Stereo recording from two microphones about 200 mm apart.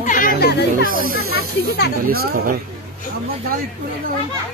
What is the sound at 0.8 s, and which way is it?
A woman's voice, 45° right (ahead or behind).